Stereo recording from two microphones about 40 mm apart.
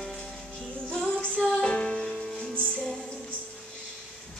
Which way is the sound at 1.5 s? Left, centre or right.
Left.